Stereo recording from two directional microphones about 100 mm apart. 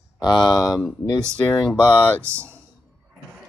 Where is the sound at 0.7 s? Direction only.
Centre (ahead or behind).